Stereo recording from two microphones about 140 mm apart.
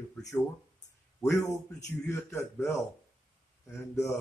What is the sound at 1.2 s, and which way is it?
A man's voice, 20° left (ahead or behind).